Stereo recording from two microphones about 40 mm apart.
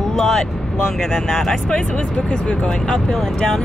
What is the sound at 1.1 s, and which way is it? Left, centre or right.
Speech, centre.